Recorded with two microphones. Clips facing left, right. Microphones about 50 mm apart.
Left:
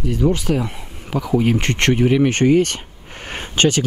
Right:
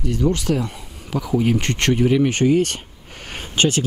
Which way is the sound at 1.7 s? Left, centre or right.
Left.